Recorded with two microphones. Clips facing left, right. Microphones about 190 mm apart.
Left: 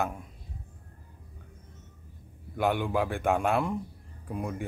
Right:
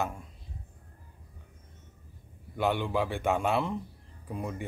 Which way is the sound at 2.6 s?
10° left (ahead or behind).